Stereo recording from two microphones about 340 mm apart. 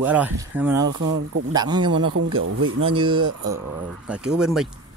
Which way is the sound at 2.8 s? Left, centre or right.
Centre.